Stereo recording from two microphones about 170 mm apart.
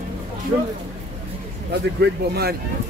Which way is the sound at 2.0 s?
70° right (ahead or behind).